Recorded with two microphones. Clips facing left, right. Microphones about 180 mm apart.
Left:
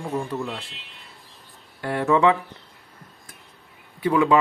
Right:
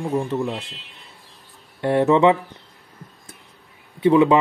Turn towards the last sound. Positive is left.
turn(degrees=-25)  # may be behind; listen again after turning